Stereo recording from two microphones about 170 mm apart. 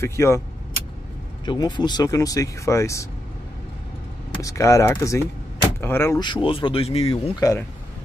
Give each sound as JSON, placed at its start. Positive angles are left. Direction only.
{"t": 0.0, "sound": "speech", "side_deg": 15}
{"t": 1.4, "sound": "speech", "side_deg": 25}
{"t": 4.4, "sound": "speech", "side_deg": 20}
{"t": 6.1, "sound": "speech", "side_deg": 25}
{"t": 7.3, "sound": "speech", "side_deg": 20}